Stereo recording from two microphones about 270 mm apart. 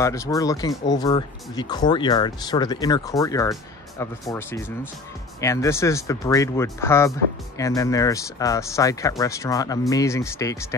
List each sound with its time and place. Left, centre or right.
0.0 s speech: centre